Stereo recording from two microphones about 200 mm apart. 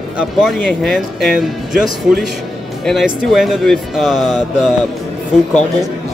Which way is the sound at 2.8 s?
Centre (ahead or behind).